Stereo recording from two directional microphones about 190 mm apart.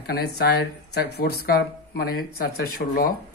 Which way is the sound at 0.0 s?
55° left (ahead or behind).